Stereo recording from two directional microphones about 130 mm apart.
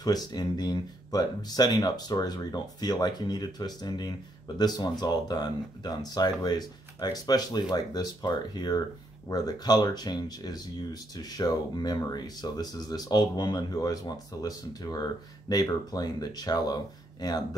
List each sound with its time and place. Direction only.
0.0 s speech: 30° left (ahead or behind)